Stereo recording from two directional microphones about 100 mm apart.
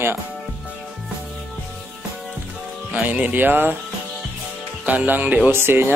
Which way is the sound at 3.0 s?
15° right (ahead or behind).